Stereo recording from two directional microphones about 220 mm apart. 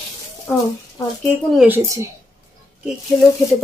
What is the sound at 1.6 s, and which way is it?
Speech, 10° right (ahead or behind).